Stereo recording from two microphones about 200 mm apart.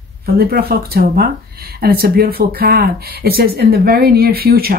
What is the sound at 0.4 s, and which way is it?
A woman's voice, 50° right (ahead or behind).